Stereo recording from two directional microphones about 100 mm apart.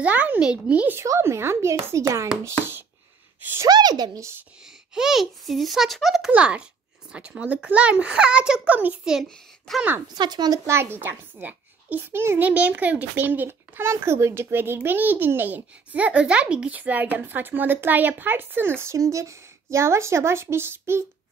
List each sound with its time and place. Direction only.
0.0 s a child's voice: 15° right (ahead or behind)
0.9 s a child's voice: 30° right (ahead or behind)
3.6 s speech: 40° right (ahead or behind)
4.9 s a child's voice: 5° right (ahead or behind)
9.7 s speech: 5° left (ahead or behind)
10.1 s speech: 45° right (ahead or behind)
10.7 s a child's voice: 25° right (ahead or behind)